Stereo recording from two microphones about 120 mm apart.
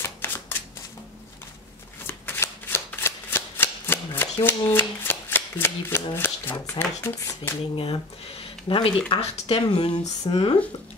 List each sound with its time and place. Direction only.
0.0 s shuffling cards: 20° left (ahead or behind)
2.0 s shuffling cards: 20° left (ahead or behind)
6.8 s speech: 20° left (ahead or behind)
7.7 s speech: 50° left (ahead or behind)